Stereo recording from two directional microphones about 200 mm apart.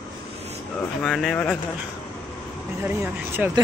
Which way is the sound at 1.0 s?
Centre (ahead or behind).